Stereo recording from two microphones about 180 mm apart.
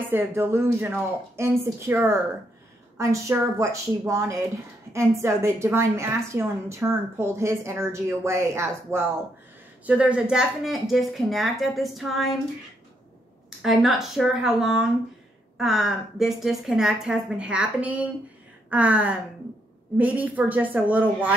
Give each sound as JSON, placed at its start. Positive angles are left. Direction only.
{"t": 0.1, "sound": "a woman's voice", "side_deg": -15}
{"t": 13.6, "sound": "a woman's voice", "side_deg": 0}